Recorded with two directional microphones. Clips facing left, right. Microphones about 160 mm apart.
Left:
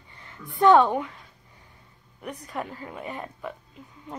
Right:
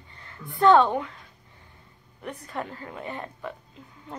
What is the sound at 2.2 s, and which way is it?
A woman's voice, 10° left (ahead or behind).